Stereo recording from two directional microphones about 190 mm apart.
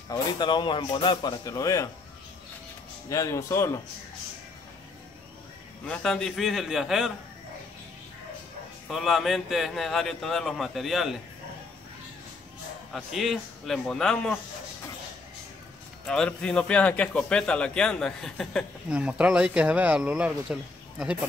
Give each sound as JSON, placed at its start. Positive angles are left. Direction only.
{"t": 0.1, "sound": "speech", "side_deg": 25}
{"t": 3.1, "sound": "speech", "side_deg": 15}
{"t": 5.9, "sound": "a man's voice", "side_deg": 5}
{"t": 8.8, "sound": "a man's voice", "side_deg": 0}
{"t": 12.9, "sound": "a man's voice", "side_deg": 0}
{"t": 16.1, "sound": "a man's voice", "side_deg": 5}